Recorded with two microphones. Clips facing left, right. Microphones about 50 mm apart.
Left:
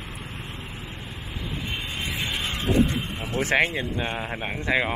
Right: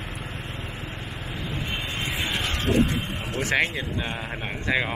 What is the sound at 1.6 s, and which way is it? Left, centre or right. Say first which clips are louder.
Vehicle: right 1 dB; centre.